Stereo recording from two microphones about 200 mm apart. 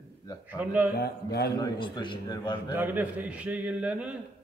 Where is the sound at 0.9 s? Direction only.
55° left (ahead or behind).